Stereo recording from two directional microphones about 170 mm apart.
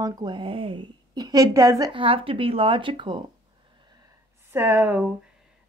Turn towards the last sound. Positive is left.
turn(degrees=-10)  # may be behind; listen again after turning